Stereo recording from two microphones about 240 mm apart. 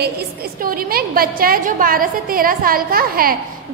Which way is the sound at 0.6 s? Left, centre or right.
Right.